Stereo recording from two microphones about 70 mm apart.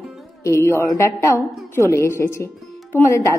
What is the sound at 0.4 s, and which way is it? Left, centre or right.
A woman's voice, left.